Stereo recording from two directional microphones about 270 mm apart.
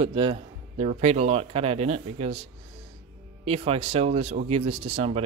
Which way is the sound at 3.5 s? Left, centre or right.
Right.